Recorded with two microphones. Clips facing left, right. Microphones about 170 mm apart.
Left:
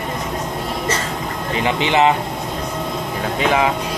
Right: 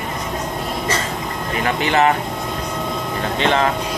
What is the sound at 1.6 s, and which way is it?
Speech, 20° left (ahead or behind).